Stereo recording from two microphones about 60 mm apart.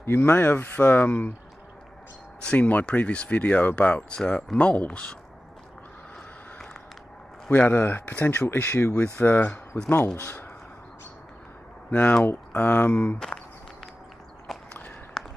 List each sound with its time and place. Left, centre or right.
0.0 s speech: left
2.4 s speech: left
7.4 s speech: left
8.9 s speech: left
11.9 s speech: left
14.5 s walk: centre
15.2 s a sound: centre